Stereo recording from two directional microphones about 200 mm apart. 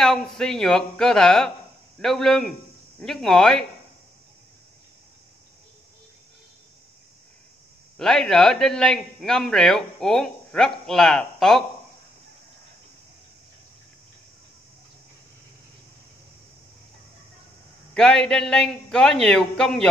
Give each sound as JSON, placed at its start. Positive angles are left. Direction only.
{"t": 0.0, "sound": "a man's voice", "side_deg": 0}
{"t": 8.0, "sound": "a man's voice", "side_deg": 5}
{"t": 17.9, "sound": "a man's voice", "side_deg": 5}